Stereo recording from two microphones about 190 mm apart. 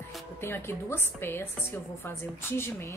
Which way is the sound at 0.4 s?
10° left (ahead or behind).